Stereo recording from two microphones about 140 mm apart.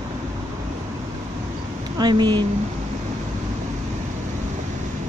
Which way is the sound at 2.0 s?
30° right (ahead or behind).